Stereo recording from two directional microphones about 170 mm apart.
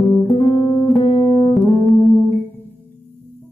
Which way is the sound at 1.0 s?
30° left (ahead or behind).